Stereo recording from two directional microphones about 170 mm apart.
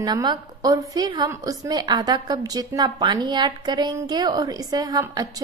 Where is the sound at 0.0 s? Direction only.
25° right (ahead or behind).